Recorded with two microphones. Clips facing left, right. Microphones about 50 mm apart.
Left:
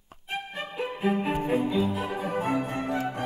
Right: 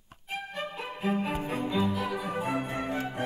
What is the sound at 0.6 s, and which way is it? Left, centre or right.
Music, centre.